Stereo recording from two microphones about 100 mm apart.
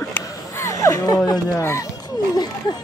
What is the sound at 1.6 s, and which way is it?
Speech, 25° left (ahead or behind).